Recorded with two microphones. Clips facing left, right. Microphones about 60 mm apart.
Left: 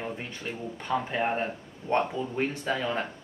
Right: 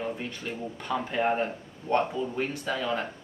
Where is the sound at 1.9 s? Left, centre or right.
Left.